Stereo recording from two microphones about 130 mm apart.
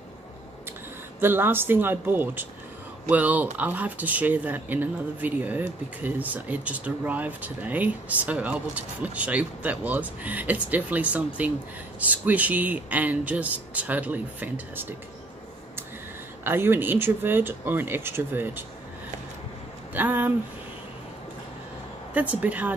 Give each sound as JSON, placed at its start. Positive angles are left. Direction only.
{"t": 1.2, "sound": "speech", "side_deg": -15}
{"t": 16.4, "sound": "speech", "side_deg": -15}
{"t": 19.9, "sound": "speech", "side_deg": -15}
{"t": 22.1, "sound": "speech", "side_deg": -10}